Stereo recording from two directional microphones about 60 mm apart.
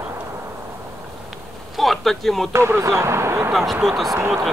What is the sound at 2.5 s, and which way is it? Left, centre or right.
Speech, right.